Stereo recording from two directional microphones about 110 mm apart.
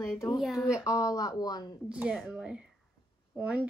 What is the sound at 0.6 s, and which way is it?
A woman's voice, 30° left (ahead or behind).